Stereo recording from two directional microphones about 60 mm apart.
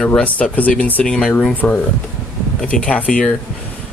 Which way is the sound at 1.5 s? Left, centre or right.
Left.